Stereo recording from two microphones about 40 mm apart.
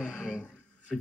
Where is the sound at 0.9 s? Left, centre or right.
Centre.